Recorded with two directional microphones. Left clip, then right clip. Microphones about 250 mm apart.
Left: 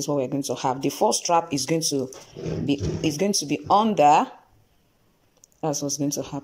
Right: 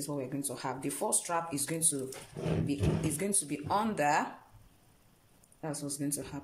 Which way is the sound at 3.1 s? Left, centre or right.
Left.